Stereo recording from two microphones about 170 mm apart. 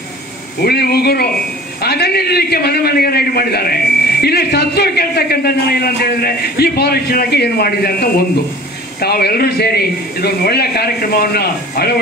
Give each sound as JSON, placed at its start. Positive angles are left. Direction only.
{"t": 0.6, "sound": "a man's voice", "side_deg": 65}